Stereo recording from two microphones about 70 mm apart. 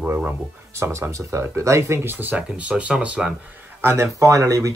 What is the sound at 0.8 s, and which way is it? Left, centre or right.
Speech, right.